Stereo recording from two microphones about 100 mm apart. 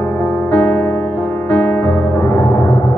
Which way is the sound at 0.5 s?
20° left (ahead or behind).